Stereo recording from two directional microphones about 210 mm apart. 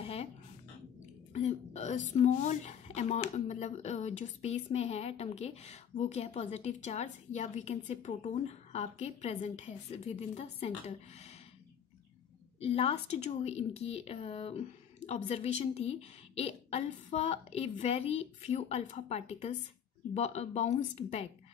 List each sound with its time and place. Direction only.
0.0 s a sound: 30° left (ahead or behind)
1.3 s a woman's voice: 35° left (ahead or behind)
12.5 s a woman's voice: 30° left (ahead or behind)